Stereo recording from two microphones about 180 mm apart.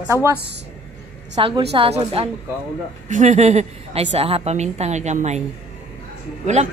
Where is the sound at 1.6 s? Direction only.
35° right (ahead or behind).